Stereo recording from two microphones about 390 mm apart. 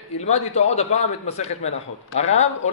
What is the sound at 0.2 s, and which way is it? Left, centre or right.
Speech, centre.